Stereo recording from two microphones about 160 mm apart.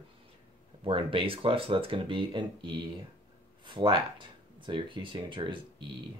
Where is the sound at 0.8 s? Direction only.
35° right (ahead or behind).